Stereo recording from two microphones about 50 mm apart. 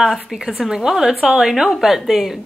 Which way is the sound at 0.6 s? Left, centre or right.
Centre.